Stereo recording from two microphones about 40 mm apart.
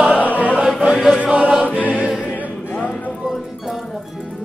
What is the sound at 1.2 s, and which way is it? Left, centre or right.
Choir, right.